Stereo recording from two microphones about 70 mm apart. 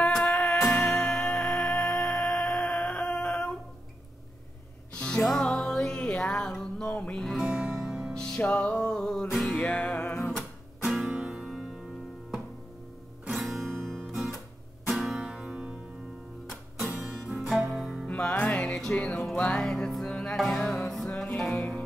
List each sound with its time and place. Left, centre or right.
0.5 s music: centre
4.9 s music: centre
6.9 s music: left
7.2 s music: centre
7.4 s music: centre
8.1 s music: centre
13.2 s music: centre
17.0 s music: centre
18.5 s music: centre